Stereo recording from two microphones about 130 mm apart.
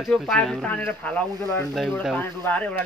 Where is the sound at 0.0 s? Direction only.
5° left (ahead or behind).